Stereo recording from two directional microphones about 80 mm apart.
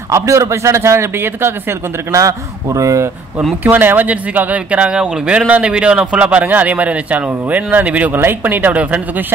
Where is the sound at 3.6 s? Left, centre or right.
Right.